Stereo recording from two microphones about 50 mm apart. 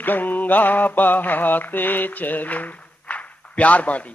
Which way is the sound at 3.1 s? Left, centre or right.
Left.